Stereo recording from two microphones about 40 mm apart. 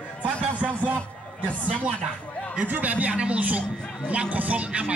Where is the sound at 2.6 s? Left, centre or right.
Right.